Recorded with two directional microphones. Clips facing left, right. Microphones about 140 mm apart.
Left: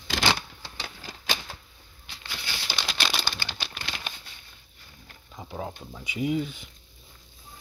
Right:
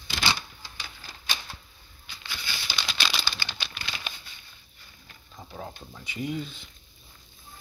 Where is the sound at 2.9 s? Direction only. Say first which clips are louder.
Left 2 dB; 55° left (ahead or behind).